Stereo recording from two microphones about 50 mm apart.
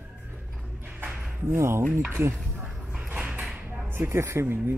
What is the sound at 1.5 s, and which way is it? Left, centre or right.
Speech, right.